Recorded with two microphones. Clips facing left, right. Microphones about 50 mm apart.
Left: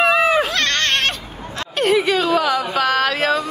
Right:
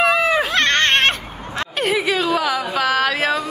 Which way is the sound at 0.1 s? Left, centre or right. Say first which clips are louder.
Left 2 dB; centre.